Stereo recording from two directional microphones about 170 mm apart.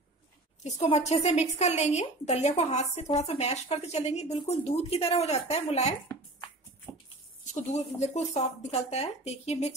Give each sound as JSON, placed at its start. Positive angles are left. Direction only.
{"t": 0.7, "sound": "a woman's voice", "side_deg": 40}
{"t": 6.9, "sound": "a sound", "side_deg": 25}
{"t": 7.5, "sound": "a woman's voice", "side_deg": 40}